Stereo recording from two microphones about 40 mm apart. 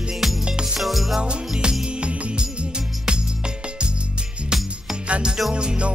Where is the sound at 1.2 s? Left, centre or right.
Right.